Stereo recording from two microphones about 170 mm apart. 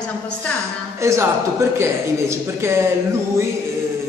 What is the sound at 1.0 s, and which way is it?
A man's voice, 15° right (ahead or behind).